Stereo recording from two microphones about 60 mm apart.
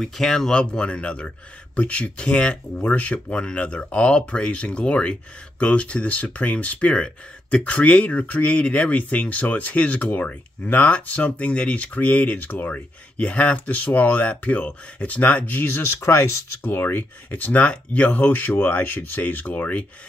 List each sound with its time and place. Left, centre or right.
0.0 s speech: centre; by 19.9 s left